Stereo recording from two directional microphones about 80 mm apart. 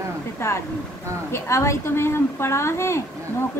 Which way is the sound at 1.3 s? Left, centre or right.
Left.